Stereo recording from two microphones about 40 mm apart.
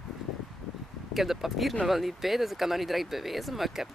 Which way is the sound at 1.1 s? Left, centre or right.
Centre.